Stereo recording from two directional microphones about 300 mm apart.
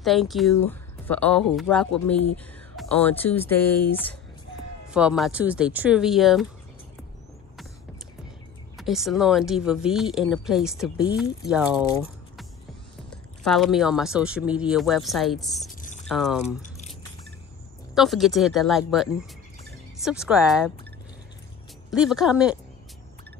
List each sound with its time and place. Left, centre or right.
0.0 s speech: centre
8.7 s speech: centre
15.7 s a sound: left
16.1 s speech: centre
17.9 s speech: centre
21.9 s speech: centre